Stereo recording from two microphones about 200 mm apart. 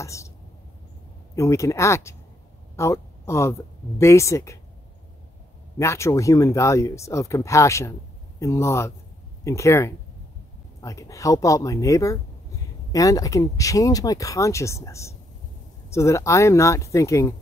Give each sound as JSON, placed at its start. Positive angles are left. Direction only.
{"t": 0.0, "sound": "speech", "side_deg": 15}
{"t": 1.3, "sound": "speech", "side_deg": 15}
{"t": 5.8, "sound": "speech", "side_deg": 15}